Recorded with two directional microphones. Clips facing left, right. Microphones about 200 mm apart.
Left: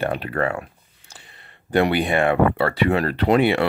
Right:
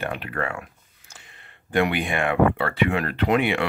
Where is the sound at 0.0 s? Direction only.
35° left (ahead or behind).